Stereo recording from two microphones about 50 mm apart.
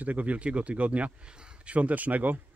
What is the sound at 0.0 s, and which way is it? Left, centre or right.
Speech, right.